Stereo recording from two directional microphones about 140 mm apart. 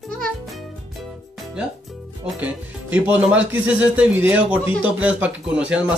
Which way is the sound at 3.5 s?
10° right (ahead or behind).